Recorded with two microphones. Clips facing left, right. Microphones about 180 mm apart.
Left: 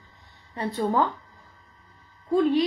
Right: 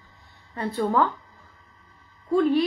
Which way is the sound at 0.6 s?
20° left (ahead or behind).